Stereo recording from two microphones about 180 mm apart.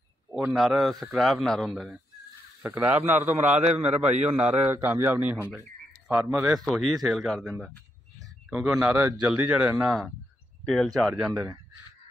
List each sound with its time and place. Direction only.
0.3 s a man's voice: 5° right (ahead or behind)
3.6 s a man's voice: 40° right (ahead or behind)
4.5 s a man's voice: 15° right (ahead or behind)
6.5 s a man's voice: centre (ahead or behind)